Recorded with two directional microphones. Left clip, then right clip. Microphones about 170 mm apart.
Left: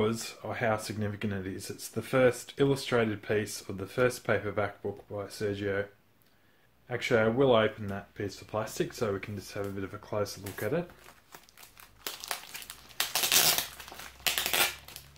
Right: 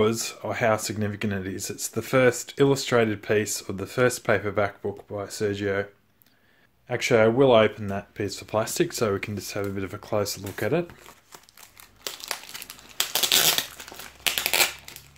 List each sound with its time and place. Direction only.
0.0 s speech: 35° right (ahead or behind)
6.9 s speech: 35° right (ahead or behind)
12.0 s crumpling: 15° right (ahead or behind)